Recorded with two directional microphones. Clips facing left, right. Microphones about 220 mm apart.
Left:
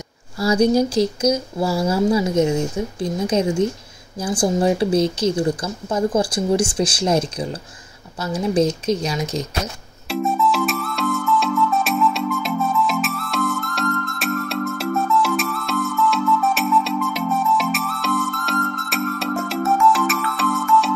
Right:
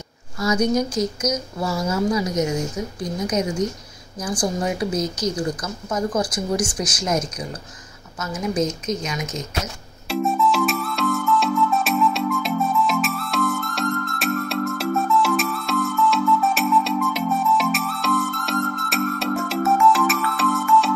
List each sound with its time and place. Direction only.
0.4 s a woman's voice: 30° left (ahead or behind)
10.0 s music: centre (ahead or behind)